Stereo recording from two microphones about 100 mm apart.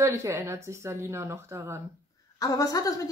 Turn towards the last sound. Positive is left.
turn(degrees=35)  # may be behind; listen again after turning